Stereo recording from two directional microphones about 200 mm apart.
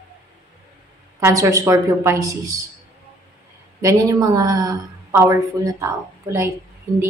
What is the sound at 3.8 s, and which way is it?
A woman's voice, 15° right (ahead or behind).